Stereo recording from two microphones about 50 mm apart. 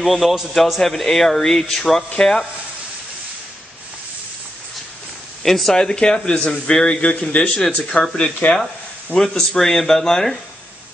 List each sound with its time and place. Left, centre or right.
0.0 s a man's voice: centre
5.4 s speech: centre